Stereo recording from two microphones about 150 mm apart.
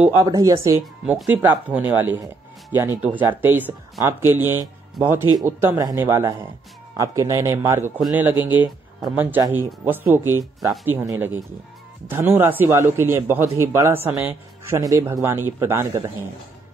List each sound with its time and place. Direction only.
0.2 s speech: 25° right (ahead or behind)
1.0 s a man's voice: 10° right (ahead or behind)